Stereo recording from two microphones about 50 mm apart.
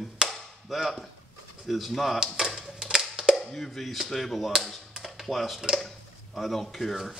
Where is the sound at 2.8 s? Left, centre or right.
Centre.